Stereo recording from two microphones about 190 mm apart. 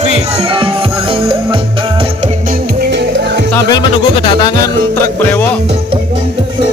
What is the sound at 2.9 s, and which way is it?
Music, 65° right (ahead or behind).